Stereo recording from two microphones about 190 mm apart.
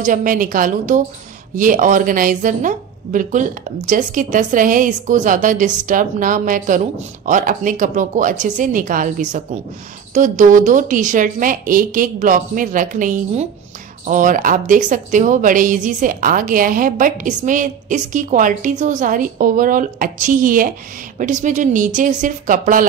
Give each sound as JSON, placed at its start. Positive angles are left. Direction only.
{"t": 0.0, "sound": "a woman's voice", "side_deg": -45}